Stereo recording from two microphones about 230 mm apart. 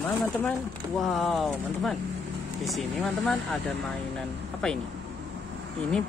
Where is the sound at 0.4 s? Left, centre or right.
Centre.